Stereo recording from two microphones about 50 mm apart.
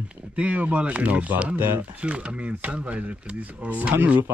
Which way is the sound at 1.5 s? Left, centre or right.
Right.